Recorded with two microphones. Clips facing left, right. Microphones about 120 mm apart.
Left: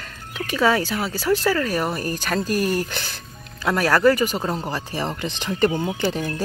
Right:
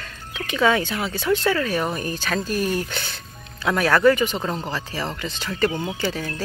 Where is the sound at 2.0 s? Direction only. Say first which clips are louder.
Left 1 dB; 40° left (ahead or behind).